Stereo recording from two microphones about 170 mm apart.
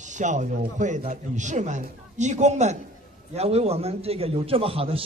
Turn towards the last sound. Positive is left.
turn(degrees=-35)  # may be behind; listen again after turning